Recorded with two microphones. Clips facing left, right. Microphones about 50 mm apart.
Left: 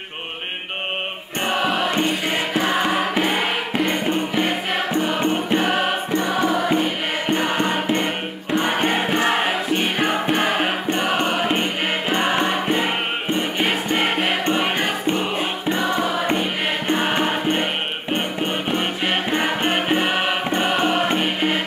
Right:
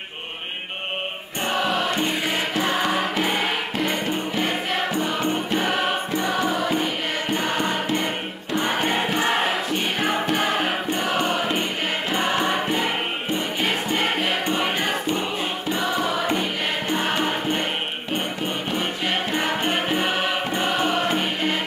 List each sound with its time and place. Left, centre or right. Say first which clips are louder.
1.5 s music: left 2 dB; centre
13.9 s music: left 2 dB; centre
17.1 s music: left 2 dB; left
18.7 s music: left 2 dB; left
19.3 s music: left 3 dB; centre